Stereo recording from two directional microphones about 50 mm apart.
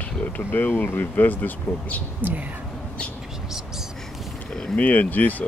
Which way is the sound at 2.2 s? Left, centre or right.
Right.